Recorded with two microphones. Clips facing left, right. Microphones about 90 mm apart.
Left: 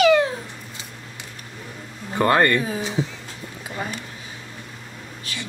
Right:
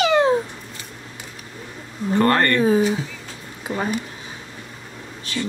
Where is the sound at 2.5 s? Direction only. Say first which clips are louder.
Right 8 dB; 35° right (ahead or behind).